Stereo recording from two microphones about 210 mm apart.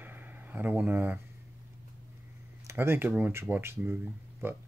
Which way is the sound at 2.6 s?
10° right (ahead or behind).